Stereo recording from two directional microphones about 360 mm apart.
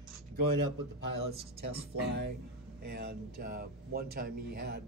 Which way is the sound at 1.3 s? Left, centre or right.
Right.